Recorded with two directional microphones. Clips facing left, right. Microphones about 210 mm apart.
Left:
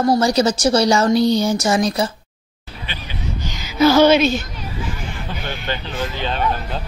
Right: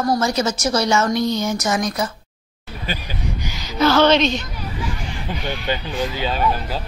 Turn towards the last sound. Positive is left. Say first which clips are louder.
# right 1 dB
turn(degrees=-5)  # may be behind; listen again after turning